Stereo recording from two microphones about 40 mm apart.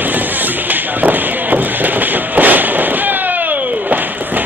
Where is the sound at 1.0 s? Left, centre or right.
Right.